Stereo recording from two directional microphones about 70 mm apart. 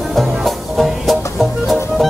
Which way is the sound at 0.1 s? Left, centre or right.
Centre.